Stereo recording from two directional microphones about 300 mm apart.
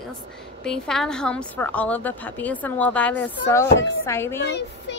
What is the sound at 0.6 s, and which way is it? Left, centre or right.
A woman's voice, centre.